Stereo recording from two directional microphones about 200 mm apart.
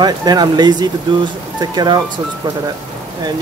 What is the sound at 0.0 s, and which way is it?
Speech, 20° right (ahead or behind).